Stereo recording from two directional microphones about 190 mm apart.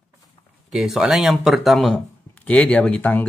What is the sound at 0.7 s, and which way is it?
Speech, centre (ahead or behind).